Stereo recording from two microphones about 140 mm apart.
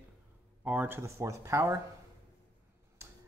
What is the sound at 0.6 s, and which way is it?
Speech, 15° right (ahead or behind).